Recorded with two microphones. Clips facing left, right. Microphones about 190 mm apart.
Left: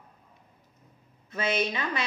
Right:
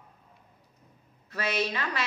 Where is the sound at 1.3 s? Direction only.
20° left (ahead or behind).